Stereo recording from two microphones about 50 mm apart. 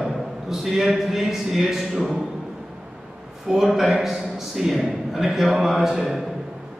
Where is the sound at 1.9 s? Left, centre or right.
Right.